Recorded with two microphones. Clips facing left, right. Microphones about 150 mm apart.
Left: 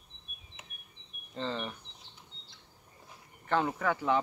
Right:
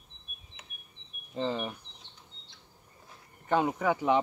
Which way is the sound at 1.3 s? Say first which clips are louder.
Right 4 dB; 10° right (ahead or behind).